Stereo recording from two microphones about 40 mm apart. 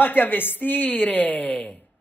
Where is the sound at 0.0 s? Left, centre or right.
Left.